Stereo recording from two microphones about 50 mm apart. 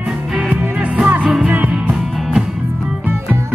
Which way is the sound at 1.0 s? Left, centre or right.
Right.